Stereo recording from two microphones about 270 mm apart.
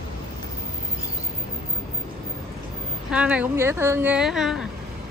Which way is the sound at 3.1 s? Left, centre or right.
Centre.